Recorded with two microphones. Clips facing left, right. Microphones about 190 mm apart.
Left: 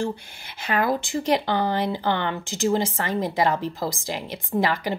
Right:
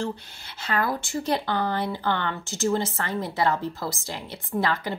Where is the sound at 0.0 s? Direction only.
15° left (ahead or behind).